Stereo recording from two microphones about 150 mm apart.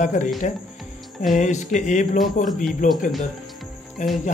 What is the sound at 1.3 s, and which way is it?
Speech, 55° left (ahead or behind).